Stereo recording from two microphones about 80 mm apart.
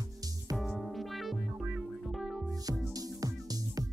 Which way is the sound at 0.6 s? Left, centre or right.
Centre.